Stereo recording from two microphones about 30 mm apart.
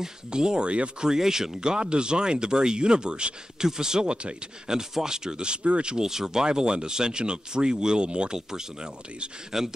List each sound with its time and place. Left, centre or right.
0.3 s speech: right
1.6 s speech: right
3.5 s speech: centre
4.7 s speech: right
5.9 s speech: centre
9.5 s speech: centre